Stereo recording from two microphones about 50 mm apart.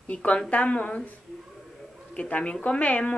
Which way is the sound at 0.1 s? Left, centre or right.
Left.